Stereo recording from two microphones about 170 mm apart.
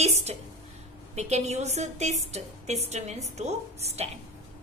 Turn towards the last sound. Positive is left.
turn(degrees=-40)  # may be behind; listen again after turning